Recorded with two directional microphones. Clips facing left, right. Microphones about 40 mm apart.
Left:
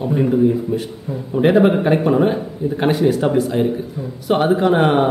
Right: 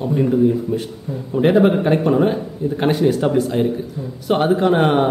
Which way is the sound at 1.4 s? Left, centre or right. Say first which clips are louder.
Left 1 dB; centre.